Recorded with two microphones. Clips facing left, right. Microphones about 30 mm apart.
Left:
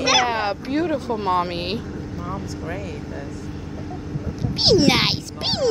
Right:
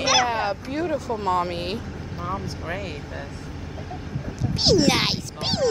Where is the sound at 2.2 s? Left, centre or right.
Centre.